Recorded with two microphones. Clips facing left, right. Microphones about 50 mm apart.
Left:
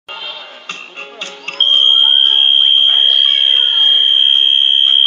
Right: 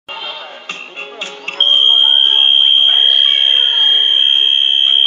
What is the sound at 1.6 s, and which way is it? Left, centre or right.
Music, right.